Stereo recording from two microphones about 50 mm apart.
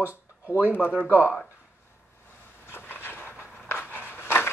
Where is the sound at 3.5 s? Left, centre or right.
Left.